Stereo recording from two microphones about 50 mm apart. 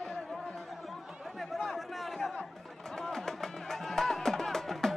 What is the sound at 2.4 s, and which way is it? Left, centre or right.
Music, centre.